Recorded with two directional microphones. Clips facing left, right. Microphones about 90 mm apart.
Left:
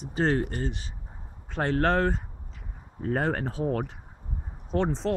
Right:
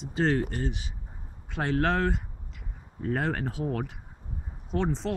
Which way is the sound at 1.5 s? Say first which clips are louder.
Left 2 dB; centre (ahead or behind).